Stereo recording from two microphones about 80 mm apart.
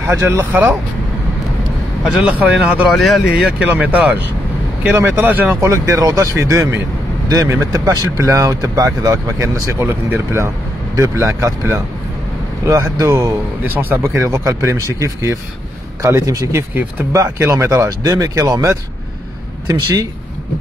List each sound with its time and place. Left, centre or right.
0.0 s speech: right
2.0 s speech: centre
2.9 s speech: centre
3.5 s speech: centre
4.9 s speech: right
5.6 s speech: right
7.2 s speech: right
13.0 s speech: right
13.7 s speech: right